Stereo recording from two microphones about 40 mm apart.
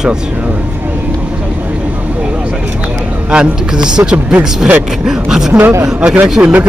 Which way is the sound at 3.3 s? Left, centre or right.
Right.